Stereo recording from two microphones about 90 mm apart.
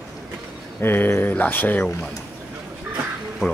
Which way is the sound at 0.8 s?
25° left (ahead or behind).